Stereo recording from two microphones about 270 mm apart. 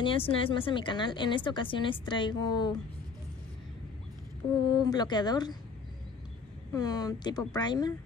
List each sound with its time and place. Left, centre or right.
0.0 s speech: centre
4.8 s speech: centre
6.7 s speech: centre